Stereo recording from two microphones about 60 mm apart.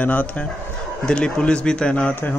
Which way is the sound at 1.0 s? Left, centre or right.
Centre.